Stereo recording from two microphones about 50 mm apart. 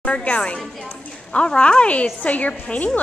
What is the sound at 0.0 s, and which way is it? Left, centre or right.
Speech, left.